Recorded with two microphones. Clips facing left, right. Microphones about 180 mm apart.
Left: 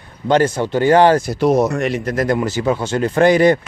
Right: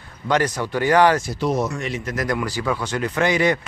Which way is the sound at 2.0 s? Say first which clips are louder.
Left 6 dB; 30° left (ahead or behind).